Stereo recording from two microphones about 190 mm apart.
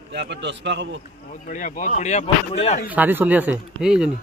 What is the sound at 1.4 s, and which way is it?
Speech, 40° left (ahead or behind).